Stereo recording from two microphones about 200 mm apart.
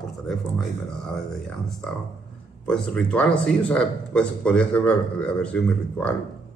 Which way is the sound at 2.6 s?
5° left (ahead or behind).